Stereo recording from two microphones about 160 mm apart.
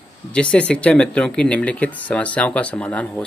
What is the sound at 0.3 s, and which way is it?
Speech, 5° left (ahead or behind).